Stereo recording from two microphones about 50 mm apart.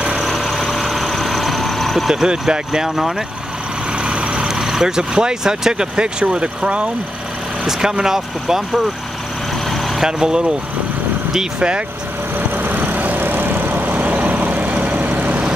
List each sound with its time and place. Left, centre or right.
0.1 s vehicle: centre
4.0 s speech: centre
10.0 s speech: centre
12.4 s vehicle: right